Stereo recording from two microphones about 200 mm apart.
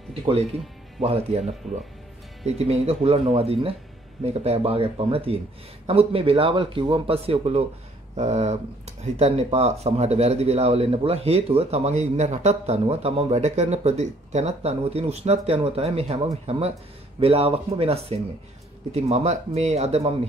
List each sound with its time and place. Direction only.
0.1 s speech: 30° right (ahead or behind)